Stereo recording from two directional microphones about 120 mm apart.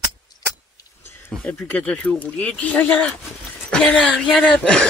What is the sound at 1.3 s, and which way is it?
Speech, 5° left (ahead or behind).